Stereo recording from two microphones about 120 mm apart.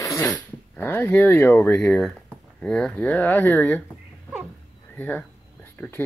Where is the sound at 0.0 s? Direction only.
25° left (ahead or behind).